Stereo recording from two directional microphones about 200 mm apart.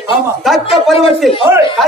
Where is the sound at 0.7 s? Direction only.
30° left (ahead or behind).